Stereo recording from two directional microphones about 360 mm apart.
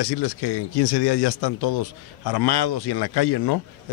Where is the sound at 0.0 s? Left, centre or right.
Left.